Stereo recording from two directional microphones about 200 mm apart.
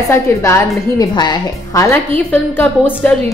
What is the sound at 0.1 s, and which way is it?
A woman's voice, 15° left (ahead or behind).